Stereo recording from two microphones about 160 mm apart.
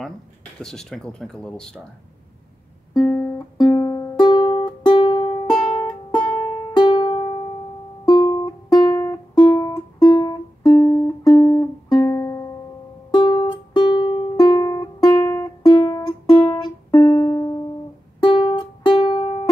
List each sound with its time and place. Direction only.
0.6 s speech: 5° left (ahead or behind)
3.5 s music: 25° left (ahead or behind)
5.7 s music: 40° left (ahead or behind)
6.1 s music: 10° left (ahead or behind)
6.8 s music: 30° left (ahead or behind)
13.1 s music: 30° left (ahead or behind)